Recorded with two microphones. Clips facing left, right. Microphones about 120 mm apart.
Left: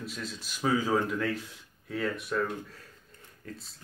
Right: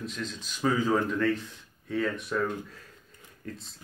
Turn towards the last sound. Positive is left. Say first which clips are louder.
# right 3 dB
turn(degrees=5)  # may be behind; listen again after turning